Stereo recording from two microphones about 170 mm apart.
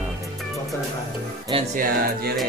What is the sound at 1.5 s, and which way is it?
Music, 30° right (ahead or behind).